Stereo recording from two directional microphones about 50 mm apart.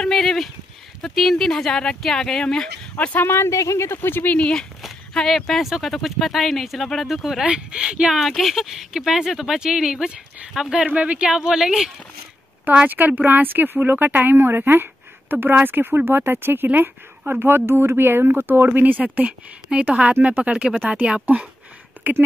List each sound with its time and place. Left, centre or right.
0.0 s speech: centre
3.3 s speech: left
4.1 s speech: left
4.4 s speech: centre
5.1 s speech: centre
7.4 s speech: centre
8.2 s speech: centre
10.9 s speech: right
11.2 s speech: centre
12.7 s speech: right
22.0 s a sound: right